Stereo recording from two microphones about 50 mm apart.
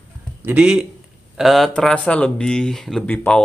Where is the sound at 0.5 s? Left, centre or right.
Right.